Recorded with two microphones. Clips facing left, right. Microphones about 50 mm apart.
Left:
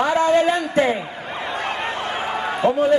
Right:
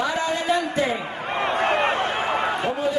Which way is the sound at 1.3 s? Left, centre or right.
Right.